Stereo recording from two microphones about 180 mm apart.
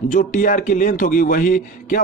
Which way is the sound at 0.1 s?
45° left (ahead or behind).